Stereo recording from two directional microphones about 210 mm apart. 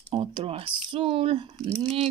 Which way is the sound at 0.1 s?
25° right (ahead or behind).